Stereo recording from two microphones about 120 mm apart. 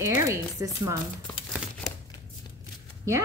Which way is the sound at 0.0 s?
25° right (ahead or behind).